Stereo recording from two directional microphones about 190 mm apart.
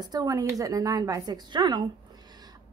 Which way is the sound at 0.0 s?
20° right (ahead or behind).